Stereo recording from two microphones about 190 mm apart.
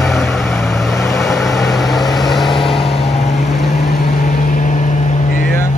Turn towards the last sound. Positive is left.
turn(degrees=45)  # may be behind; listen again after turning